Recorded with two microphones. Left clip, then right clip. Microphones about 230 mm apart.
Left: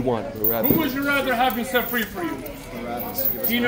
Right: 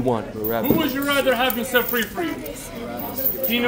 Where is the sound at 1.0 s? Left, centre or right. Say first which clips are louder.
Right 1 dB; centre.